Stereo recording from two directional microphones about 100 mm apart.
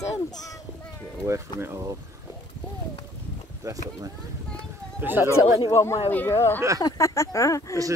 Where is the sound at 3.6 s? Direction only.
35° right (ahead or behind).